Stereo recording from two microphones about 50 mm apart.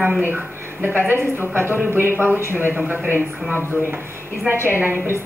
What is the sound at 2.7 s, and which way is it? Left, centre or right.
Speech, right.